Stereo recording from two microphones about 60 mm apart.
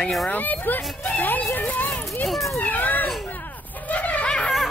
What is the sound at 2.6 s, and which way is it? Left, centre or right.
Speech, left.